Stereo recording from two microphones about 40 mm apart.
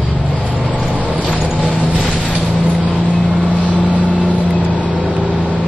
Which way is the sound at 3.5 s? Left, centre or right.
Left.